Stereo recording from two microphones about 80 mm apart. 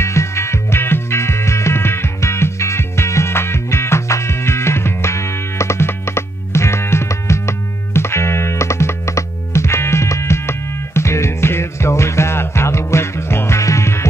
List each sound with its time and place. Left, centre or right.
0.0 s music: left